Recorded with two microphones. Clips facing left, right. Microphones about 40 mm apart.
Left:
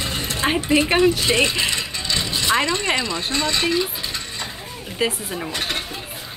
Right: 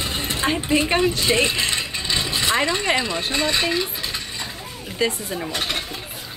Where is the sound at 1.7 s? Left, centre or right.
Centre.